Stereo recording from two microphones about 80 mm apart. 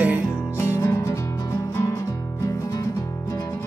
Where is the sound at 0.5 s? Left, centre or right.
Left.